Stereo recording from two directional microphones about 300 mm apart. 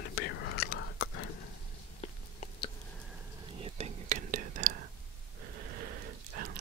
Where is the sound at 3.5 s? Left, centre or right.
Centre.